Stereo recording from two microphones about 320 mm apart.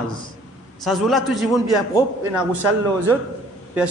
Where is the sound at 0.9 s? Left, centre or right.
Centre.